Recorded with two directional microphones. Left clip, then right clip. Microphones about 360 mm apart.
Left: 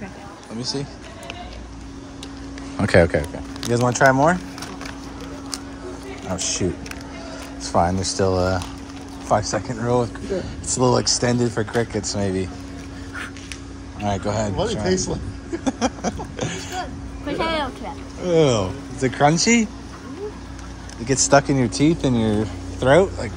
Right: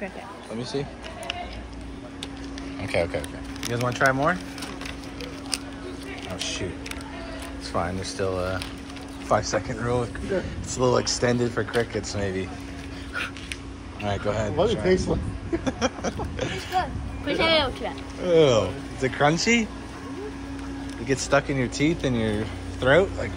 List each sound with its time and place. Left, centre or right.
0.6 s speech: centre
2.9 s speech: left
7.6 s speech: centre
14.0 s speech: centre
14.8 s speech: centre
15.6 s a sound: centre
17.3 s speech: centre
21.1 s speech: centre